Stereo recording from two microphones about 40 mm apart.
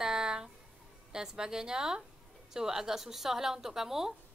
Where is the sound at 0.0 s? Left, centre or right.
Centre.